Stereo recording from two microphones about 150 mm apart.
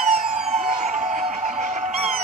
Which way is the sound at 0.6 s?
50° right (ahead or behind).